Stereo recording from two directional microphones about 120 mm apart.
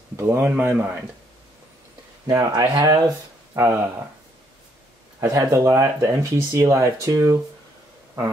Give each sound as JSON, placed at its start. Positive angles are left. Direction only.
{"t": 0.1, "sound": "speech", "side_deg": -20}
{"t": 2.2, "sound": "speech", "side_deg": -25}
{"t": 3.5, "sound": "speech", "side_deg": -20}
{"t": 5.2, "sound": "speech", "side_deg": -25}